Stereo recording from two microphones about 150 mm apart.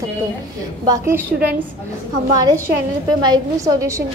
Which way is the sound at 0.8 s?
20° right (ahead or behind).